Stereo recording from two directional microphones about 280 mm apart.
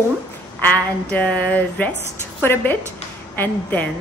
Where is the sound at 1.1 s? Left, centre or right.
Centre.